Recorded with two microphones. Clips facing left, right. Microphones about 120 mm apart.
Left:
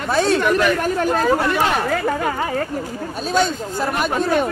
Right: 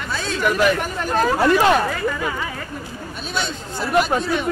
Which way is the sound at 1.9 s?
55° left (ahead or behind).